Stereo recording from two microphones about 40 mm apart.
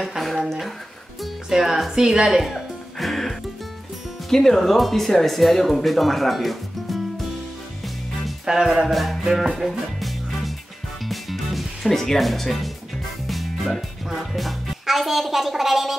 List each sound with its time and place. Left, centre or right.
0.2 s speech: centre
1.5 s a woman's voice: centre
3.0 s music: centre
4.3 s speech: centre
8.5 s a woman's voice: centre
8.8 s speech: centre
11.1 s music: centre
14.3 s speech: centre